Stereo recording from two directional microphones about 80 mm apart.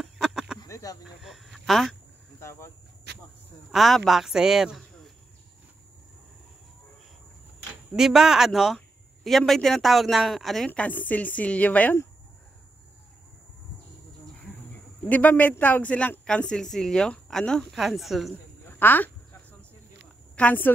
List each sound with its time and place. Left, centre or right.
0.0 s a sound: centre
0.7 s a sound: left
1.0 s speech: centre
2.4 s speech: left
3.7 s speech: centre
7.9 s speech: centre
10.7 s a woman's voice: left
15.0 s a woman's voice: left; by 18.3 s centre
18.6 s a sound: left
20.3 s a woman's voice: left